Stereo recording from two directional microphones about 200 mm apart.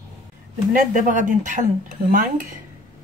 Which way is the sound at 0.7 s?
40° right (ahead or behind).